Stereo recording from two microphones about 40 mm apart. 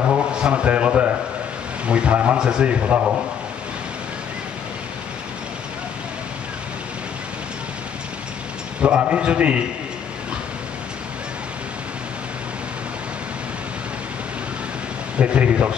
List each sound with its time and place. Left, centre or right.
0.1 s a man's voice: right
8.8 s a man's voice: right
15.1 s a man's voice: right